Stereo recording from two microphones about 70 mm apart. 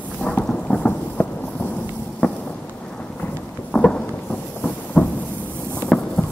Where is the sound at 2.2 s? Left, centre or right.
Centre.